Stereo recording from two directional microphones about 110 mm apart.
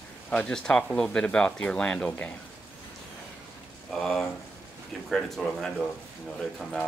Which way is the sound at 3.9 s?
5° left (ahead or behind).